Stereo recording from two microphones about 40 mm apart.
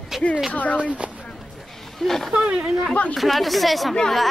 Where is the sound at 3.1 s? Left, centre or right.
Centre.